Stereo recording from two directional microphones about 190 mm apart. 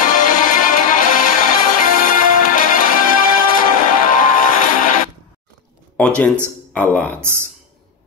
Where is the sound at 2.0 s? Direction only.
45° left (ahead or behind).